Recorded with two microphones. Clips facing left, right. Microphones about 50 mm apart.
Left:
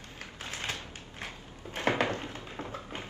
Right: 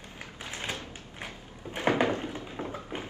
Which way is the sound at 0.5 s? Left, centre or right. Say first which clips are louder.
Right 1 dB; centre.